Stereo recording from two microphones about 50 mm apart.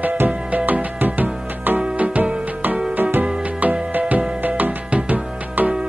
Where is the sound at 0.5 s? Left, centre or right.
Right.